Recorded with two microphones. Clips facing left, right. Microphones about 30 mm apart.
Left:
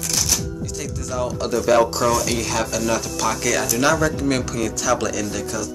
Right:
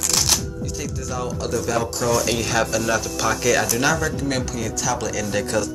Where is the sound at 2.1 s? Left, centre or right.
Centre.